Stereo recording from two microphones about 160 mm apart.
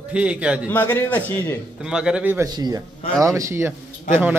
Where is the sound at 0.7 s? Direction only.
15° left (ahead or behind).